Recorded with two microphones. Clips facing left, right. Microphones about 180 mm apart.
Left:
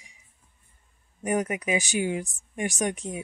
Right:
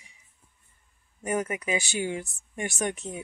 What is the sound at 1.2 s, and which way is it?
A woman's voice, 15° left (ahead or behind).